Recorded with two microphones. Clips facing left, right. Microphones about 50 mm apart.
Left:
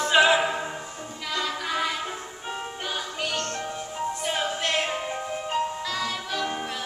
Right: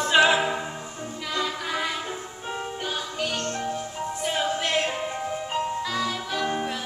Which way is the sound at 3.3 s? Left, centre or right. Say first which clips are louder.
Right 1 dB; right.